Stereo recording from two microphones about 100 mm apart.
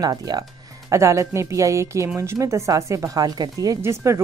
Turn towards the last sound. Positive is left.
turn(degrees=-25)  # may be behind; listen again after turning